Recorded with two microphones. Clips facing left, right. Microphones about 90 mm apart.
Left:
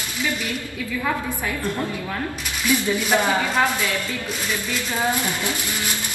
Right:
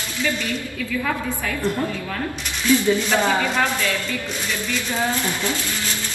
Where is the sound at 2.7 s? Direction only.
15° left (ahead or behind).